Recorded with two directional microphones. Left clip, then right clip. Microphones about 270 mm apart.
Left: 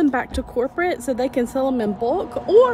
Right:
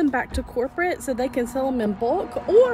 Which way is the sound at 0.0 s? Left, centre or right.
Centre.